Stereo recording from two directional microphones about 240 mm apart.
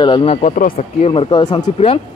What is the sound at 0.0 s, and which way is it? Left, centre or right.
A man's voice, left.